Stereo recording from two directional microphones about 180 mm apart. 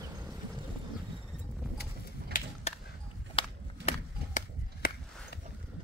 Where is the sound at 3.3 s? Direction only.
35° left (ahead or behind).